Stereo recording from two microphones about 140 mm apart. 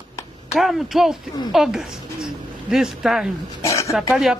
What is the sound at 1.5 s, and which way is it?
Speech, 5° right (ahead or behind).